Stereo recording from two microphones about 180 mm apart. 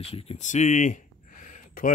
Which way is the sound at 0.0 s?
35° left (ahead or behind).